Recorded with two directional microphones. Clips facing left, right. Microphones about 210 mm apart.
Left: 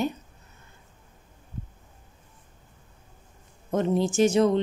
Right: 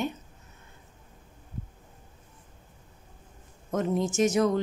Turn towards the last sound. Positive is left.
turn(degrees=30)  # may be behind; listen again after turning